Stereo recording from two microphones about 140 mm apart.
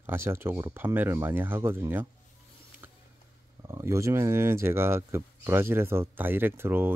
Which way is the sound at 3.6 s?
20° right (ahead or behind).